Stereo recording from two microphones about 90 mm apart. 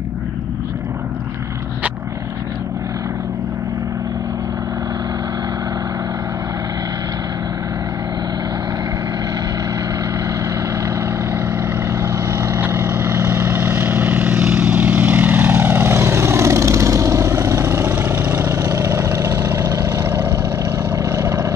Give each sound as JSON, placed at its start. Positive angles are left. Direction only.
{"t": 12.0, "sound": "vehicle", "side_deg": -30}
{"t": 18.4, "sound": "vehicle", "side_deg": -40}